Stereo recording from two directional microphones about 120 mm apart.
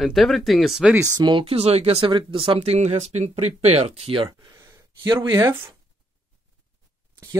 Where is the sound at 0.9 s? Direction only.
25° right (ahead or behind).